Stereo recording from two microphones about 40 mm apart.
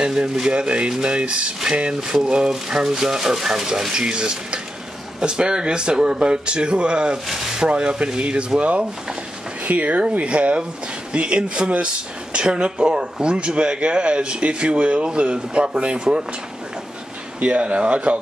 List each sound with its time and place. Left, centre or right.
0.0 s speech: right
7.2 s a sound: centre
7.6 s speech: right
17.4 s speech: right